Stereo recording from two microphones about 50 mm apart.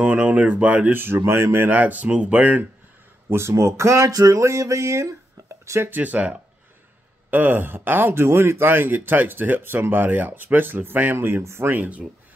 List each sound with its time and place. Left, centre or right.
0.0 s speech: right
0.9 s speech: right
1.2 s speech: right
1.7 s speech: right
3.3 s speech: right
5.9 s speech: right
11.1 s speech: right
11.7 s speech: right